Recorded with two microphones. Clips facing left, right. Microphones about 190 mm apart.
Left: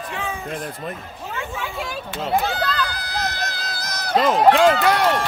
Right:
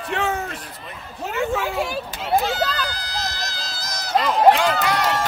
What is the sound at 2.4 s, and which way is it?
Run, 55° left (ahead or behind).